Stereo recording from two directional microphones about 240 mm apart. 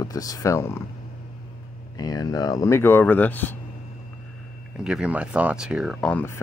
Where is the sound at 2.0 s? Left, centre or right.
Centre.